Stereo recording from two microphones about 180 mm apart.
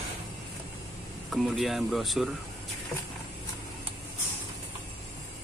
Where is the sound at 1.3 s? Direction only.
Centre (ahead or behind).